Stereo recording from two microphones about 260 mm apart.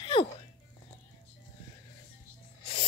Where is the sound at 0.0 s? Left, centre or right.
Centre.